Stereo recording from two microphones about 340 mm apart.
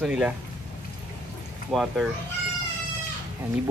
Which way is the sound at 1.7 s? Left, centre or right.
Centre.